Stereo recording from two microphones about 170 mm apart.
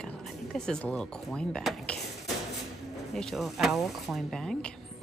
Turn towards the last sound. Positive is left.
turn(degrees=5)  # may be behind; listen again after turning